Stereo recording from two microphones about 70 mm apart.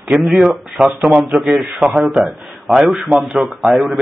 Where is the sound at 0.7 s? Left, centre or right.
Centre.